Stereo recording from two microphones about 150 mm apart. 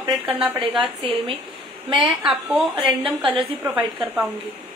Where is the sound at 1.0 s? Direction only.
35° right (ahead or behind).